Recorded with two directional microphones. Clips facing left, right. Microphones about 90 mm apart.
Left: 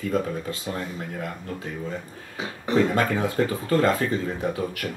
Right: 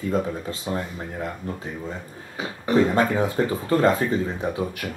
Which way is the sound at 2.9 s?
25° right (ahead or behind).